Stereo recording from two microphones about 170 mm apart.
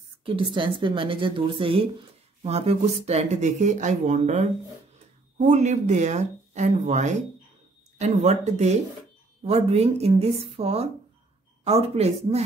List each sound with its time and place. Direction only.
0.2 s a woman's voice: 30° right (ahead or behind)